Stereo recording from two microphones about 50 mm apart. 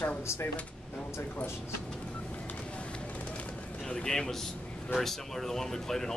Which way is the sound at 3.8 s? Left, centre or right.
Centre.